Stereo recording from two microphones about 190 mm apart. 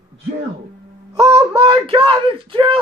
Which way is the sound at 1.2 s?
30° right (ahead or behind).